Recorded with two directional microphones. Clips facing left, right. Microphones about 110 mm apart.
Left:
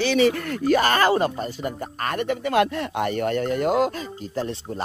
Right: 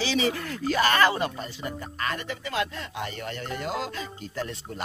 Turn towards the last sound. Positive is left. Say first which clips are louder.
# left 6 dB
turn(degrees=30)  # may be behind; listen again after turning